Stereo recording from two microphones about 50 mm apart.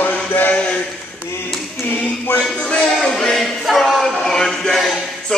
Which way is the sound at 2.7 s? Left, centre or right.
Centre.